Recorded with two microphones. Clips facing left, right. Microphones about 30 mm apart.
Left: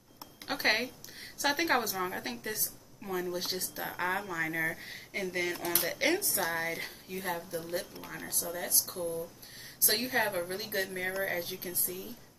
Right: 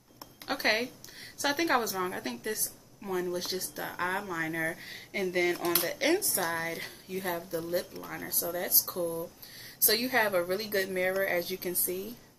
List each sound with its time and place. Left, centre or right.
0.5 s a woman's voice: centre
5.9 s a woman's voice: centre